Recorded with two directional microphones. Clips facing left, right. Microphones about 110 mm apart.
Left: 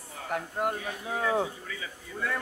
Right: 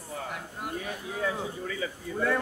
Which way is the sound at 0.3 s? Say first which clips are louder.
Left 7 dB; 50° left (ahead or behind).